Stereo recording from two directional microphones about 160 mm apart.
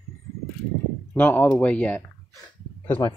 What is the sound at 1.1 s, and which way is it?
Speech, 10° left (ahead or behind).